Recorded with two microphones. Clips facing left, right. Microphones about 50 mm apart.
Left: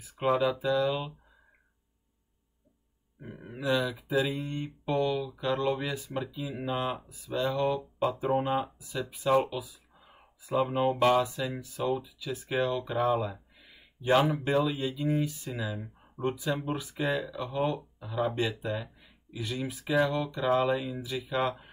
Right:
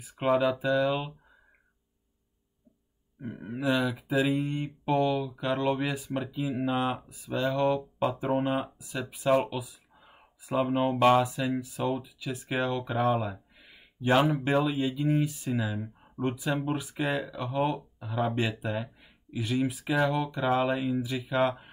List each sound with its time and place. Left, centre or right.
0.0 s speech: centre
3.2 s speech: centre
7.1 s speech: centre
11.2 s speech: centre
13.1 s a sound: centre
14.4 s speech: centre